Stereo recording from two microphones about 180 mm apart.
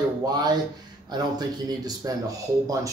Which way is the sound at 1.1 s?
20° right (ahead or behind).